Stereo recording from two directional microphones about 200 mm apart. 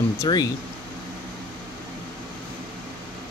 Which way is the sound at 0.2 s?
20° left (ahead or behind).